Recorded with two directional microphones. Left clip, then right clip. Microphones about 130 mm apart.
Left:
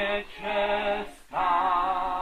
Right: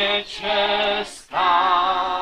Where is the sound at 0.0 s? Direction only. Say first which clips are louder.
Right 7 dB; 35° right (ahead or behind).